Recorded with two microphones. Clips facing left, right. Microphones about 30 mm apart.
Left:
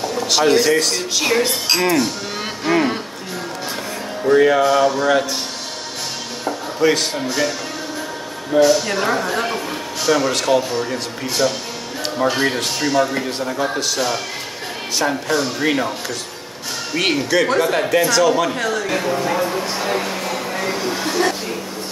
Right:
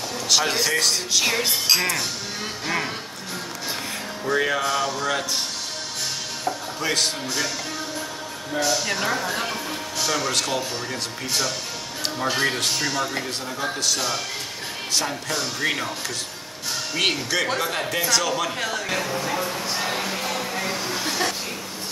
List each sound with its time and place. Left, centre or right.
0.0 s speech: centre
2.6 s music: centre
4.3 s speech: centre
6.8 s speech: centre
8.5 s speech: centre
16.9 s speech: centre
19.0 s speech: centre
19.8 s a sound: centre